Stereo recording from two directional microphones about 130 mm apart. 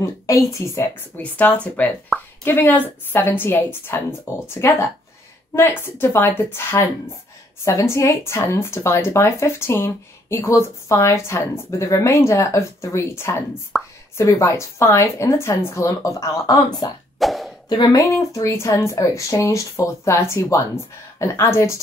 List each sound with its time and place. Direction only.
0.0 s speech: 25° left (ahead or behind)
2.1 s a sound: centre (ahead or behind)
2.4 s speech: 15° left (ahead or behind)
13.7 s speech: centre (ahead or behind)
14.1 s speech: 25° left (ahead or behind)
17.2 s plop: centre (ahead or behind)
17.6 s speech: 35° left (ahead or behind)